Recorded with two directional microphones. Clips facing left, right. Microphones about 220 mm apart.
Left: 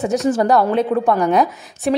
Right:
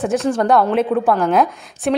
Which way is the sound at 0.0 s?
Centre (ahead or behind).